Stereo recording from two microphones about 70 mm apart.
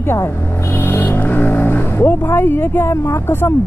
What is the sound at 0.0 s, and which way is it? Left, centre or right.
Speech, left.